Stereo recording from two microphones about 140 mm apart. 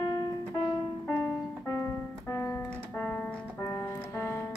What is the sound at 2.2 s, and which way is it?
Keyboard, 20° left (ahead or behind).